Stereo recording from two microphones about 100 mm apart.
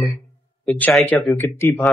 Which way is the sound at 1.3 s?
20° left (ahead or behind).